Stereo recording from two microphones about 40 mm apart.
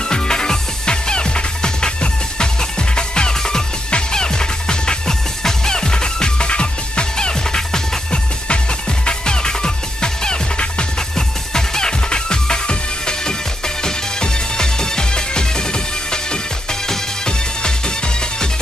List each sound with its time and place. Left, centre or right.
0.1 s music: centre